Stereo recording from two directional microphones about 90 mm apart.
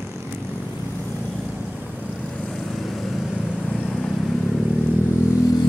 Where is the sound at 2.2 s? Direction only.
10° left (ahead or behind).